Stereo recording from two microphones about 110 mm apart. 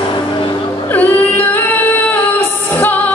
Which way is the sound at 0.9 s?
15° left (ahead or behind).